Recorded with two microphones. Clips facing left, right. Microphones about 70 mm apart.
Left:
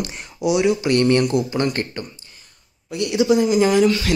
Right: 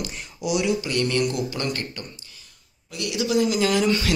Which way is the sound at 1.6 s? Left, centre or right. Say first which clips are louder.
Left 7 dB; left.